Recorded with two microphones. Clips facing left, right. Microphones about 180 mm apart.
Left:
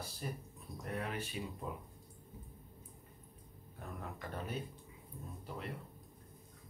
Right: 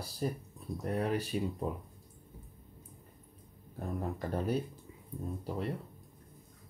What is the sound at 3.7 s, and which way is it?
Speech, 40° right (ahead or behind).